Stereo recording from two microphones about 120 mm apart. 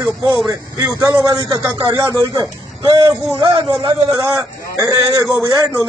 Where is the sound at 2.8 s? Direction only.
40° right (ahead or behind).